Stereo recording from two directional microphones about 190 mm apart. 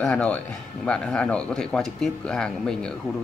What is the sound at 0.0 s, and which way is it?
Speech, 5° left (ahead or behind).